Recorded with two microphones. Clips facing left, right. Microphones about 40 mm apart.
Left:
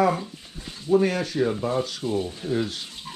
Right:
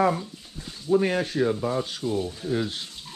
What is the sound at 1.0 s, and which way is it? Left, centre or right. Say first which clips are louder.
Speech: even; right.